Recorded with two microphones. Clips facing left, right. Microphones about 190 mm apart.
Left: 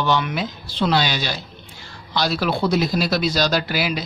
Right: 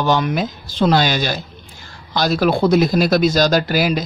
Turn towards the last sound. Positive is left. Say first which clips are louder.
# right 5 dB
turn(degrees=-45)  # may be behind; listen again after turning